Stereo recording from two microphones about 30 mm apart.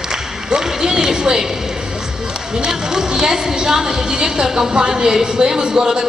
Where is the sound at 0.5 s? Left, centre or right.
Right.